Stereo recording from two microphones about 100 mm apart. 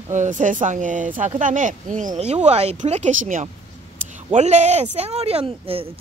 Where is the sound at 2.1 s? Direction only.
90° right.